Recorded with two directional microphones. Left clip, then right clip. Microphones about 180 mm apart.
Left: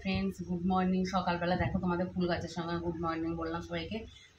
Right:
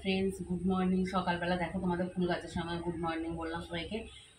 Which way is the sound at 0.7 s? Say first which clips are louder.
Left 2 dB; 5° right (ahead or behind).